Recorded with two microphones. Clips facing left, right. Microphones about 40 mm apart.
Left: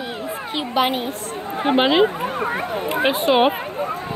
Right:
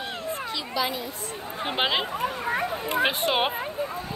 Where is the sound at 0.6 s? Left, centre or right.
Left.